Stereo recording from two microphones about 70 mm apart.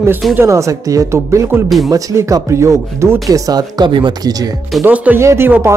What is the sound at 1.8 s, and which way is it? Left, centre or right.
Speech, right.